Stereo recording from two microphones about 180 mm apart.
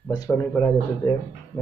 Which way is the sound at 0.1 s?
20° left (ahead or behind).